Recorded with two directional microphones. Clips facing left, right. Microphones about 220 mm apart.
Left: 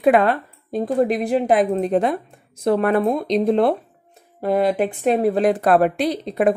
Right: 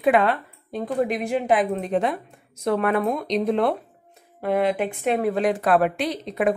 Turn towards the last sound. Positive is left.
turn(degrees=35)  # may be behind; listen again after turning